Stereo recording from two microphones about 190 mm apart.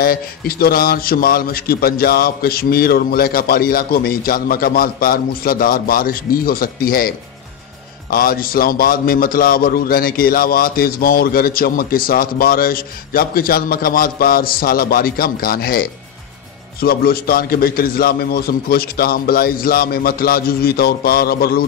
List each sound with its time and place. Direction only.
0.0 s a man's voice: 50° left (ahead or behind)
8.1 s a man's voice: 50° left (ahead or behind)
16.8 s a man's voice: 55° left (ahead or behind)